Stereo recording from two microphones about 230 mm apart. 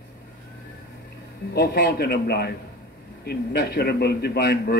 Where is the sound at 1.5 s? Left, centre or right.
Left.